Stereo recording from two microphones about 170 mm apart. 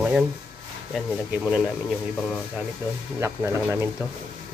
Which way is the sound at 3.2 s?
15° right (ahead or behind).